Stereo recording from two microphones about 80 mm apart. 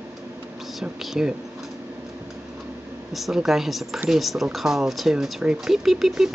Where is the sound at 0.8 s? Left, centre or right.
Centre.